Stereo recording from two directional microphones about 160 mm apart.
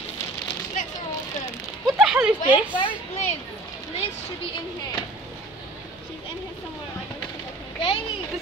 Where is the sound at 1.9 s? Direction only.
5° right (ahead or behind).